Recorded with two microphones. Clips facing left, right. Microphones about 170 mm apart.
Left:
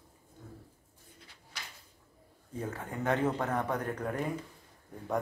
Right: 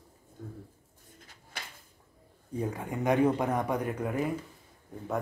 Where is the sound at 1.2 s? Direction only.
45° right (ahead or behind).